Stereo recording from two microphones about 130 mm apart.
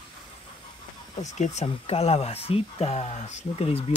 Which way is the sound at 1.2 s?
65° left (ahead or behind).